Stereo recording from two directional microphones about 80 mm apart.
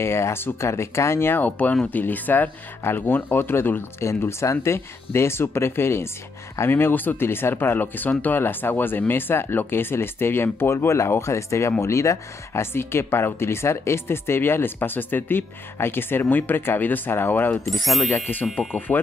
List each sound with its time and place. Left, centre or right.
0.0 s speech: left
17.6 s ding: centre
18.1 s speech: left